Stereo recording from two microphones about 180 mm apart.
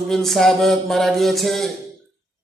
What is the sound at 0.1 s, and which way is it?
Music, centre (ahead or behind).